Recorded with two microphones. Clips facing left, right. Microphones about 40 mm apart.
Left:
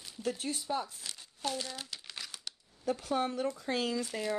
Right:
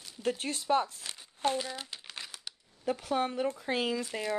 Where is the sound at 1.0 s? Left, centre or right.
Right.